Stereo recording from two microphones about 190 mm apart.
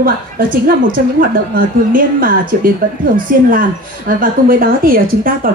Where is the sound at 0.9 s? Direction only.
45° right (ahead or behind).